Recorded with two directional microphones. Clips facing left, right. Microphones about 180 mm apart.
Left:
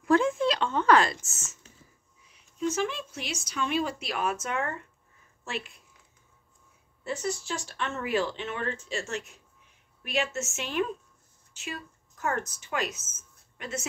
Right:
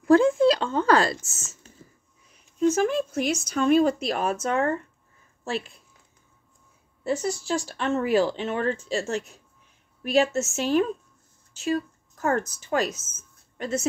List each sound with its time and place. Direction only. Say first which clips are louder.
0.0 s a sound: right 6 dB; 35° right (ahead or behind)
2.3 s speech: right 7 dB; 45° right (ahead or behind)
7.1 s a woman's voice: right 6 dB; 35° right (ahead or behind)